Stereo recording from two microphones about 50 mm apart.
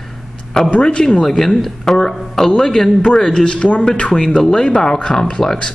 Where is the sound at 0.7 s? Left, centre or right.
Centre.